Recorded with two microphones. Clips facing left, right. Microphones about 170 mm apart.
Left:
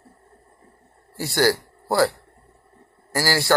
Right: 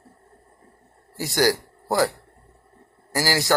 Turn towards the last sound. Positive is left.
turn(degrees=-15)  # may be behind; listen again after turning